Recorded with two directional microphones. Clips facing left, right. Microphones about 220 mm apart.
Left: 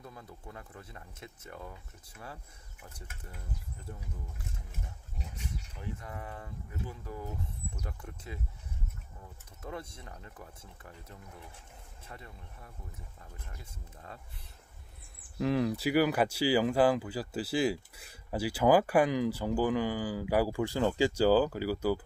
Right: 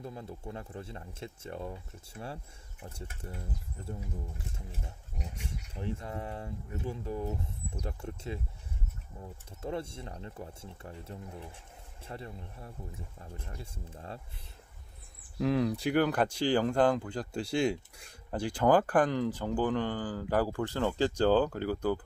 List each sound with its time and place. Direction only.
0.0 s speech: 25° right (ahead or behind)
5.8 s speech: 30° right (ahead or behind)
15.3 s speech: centre (ahead or behind)